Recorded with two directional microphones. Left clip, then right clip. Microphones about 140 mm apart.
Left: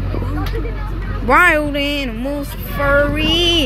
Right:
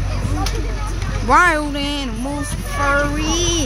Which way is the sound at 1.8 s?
60° right (ahead or behind).